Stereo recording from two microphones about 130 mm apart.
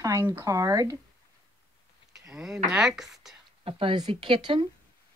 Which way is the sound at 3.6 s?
45° right (ahead or behind).